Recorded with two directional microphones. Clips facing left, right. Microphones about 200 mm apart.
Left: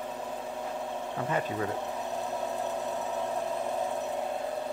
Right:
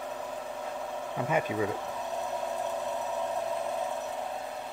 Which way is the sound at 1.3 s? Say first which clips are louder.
Right 3 dB; 10° right (ahead or behind).